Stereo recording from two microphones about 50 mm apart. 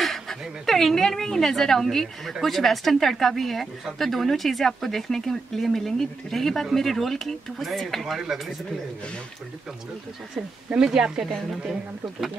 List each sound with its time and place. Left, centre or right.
0.0 s speech: centre
8.0 s speech: centre
10.8 s speech: centre